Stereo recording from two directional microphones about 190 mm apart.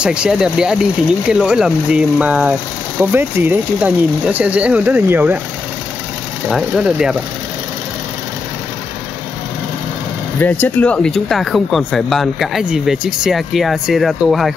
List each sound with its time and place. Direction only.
0.0 s speech: 5° right (ahead or behind)
6.5 s speech: 5° right (ahead or behind)
10.4 s speech: 10° left (ahead or behind)